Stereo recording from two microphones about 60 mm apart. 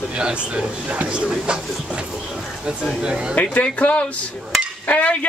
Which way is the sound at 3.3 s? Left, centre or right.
Left.